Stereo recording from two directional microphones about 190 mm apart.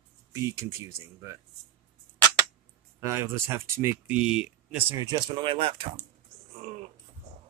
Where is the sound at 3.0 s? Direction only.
15° right (ahead or behind).